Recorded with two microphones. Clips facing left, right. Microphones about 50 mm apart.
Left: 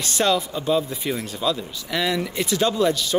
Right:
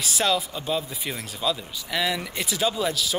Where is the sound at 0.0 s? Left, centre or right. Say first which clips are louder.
Left 3 dB; centre.